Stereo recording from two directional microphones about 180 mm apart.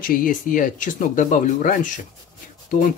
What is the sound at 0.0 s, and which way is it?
Speech, 50° left (ahead or behind).